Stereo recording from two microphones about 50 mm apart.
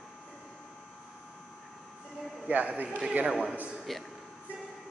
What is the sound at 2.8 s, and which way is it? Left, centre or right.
Speech, centre.